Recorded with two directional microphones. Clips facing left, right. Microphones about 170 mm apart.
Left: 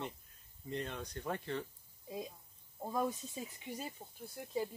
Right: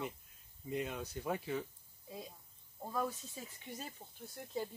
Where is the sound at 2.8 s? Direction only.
15° left (ahead or behind).